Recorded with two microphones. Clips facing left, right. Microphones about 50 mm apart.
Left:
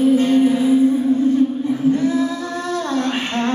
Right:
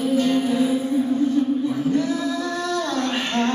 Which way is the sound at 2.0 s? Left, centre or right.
Left.